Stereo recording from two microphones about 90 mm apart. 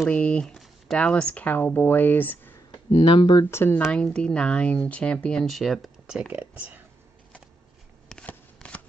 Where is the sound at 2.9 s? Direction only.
80° left; by 3.4 s 65° left (ahead or behind).